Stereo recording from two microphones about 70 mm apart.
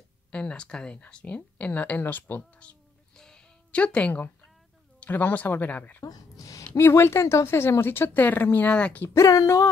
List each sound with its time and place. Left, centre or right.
0.3 s speech: centre
3.2 s a sound: centre
5.0 s speech: left
6.0 s a woman's voice: left
8.6 s speech: centre
9.1 s speech: left